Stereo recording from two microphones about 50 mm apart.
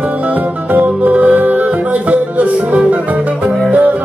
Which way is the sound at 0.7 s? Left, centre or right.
Right.